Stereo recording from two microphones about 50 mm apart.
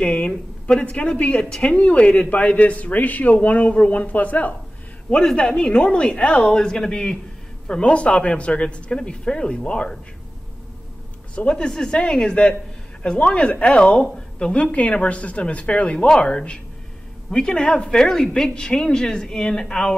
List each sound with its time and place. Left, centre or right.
0.0 s a man's voice: left
5.1 s a man's voice: centre
11.3 s a man's voice: centre